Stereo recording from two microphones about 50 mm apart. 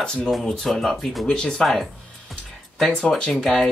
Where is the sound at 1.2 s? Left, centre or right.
Centre.